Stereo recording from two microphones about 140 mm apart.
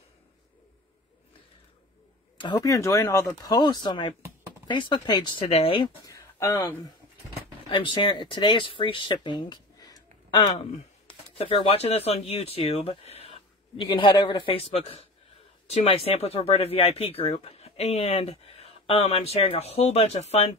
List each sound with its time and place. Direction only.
2.6 s speech: 25° left (ahead or behind)
5.5 s speech: 40° left (ahead or behind)
6.0 s a sound: 20° left (ahead or behind)
7.7 s speech: 35° left (ahead or behind)
10.6 s speech: 45° left (ahead or behind)